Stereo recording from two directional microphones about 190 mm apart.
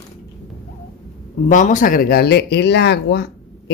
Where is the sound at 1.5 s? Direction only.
40° left (ahead or behind).